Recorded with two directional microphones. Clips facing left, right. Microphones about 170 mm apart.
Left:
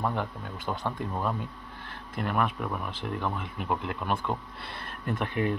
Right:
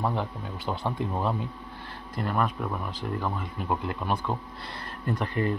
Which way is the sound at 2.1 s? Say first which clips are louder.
Right 1 dB; centre (ahead or behind).